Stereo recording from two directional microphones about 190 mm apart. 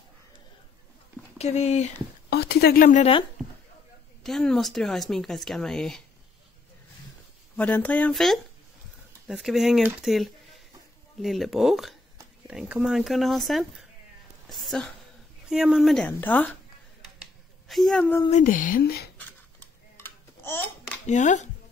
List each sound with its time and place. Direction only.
1.4 s speech: 35° left (ahead or behind)
2.2 s speech: 60° left (ahead or behind); by 3.1 s 45° left (ahead or behind)
4.2 s speech: centre (ahead or behind)
7.5 s speech: 10° left (ahead or behind)
17.2 s a sound: centre (ahead or behind)
18.3 s speech: 45° left (ahead or behind)
19.1 s dishes: 10° left (ahead or behind)
21.1 s speech: 40° left (ahead or behind)